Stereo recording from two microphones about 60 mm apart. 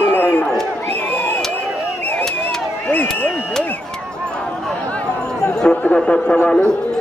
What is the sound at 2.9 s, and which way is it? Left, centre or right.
Speech, left.